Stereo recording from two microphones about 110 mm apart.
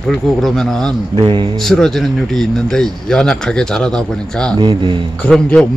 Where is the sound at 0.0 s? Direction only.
Centre (ahead or behind).